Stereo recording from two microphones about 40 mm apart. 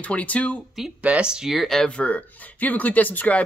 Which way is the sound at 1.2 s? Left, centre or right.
Right.